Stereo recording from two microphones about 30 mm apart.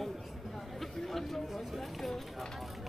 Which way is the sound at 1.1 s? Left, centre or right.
Centre.